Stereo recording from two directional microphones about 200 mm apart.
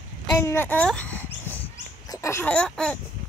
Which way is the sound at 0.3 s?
15° left (ahead or behind).